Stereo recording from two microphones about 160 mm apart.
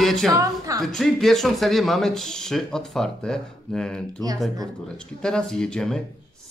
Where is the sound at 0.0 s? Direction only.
Centre (ahead or behind).